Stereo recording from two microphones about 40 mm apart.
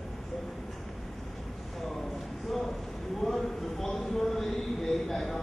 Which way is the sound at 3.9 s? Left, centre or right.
Centre.